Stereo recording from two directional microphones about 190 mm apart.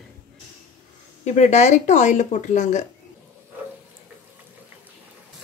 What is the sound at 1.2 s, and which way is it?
Speech, 35° left (ahead or behind).